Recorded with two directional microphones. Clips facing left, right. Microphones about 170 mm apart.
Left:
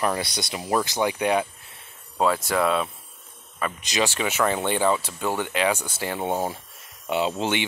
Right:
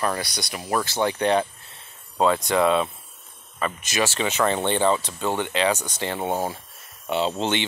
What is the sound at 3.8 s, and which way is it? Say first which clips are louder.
Speech: even; 15° left (ahead or behind).